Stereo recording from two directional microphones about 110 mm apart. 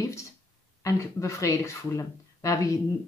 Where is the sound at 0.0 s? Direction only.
30° left (ahead or behind).